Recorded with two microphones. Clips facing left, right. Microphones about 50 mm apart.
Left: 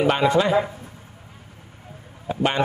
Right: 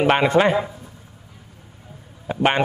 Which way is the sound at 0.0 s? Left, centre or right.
Right.